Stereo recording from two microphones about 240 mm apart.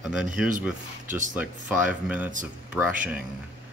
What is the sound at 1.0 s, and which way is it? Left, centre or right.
Speech, right.